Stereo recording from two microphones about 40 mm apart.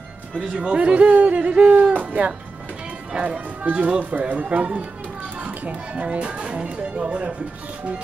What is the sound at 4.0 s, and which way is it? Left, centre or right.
Speech, right.